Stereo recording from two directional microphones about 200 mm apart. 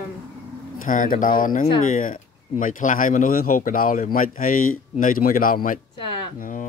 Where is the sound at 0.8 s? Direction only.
40° left (ahead or behind).